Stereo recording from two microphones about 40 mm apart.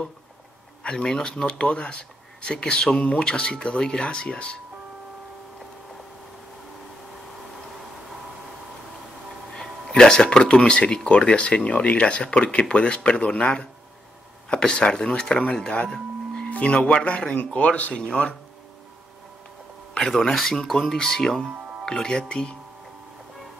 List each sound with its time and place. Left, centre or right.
0.8 s speech: centre
9.9 s a sound: centre
10.3 s speech: left
16.4 s speech: left
17.9 s speech: left
20.0 s speech: centre